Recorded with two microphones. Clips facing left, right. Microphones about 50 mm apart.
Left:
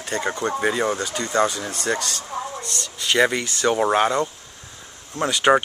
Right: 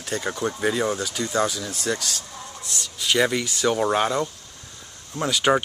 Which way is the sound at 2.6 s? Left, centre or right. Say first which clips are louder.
Left 2 dB; centre.